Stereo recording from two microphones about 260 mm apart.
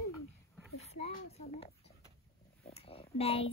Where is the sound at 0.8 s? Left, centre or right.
Left.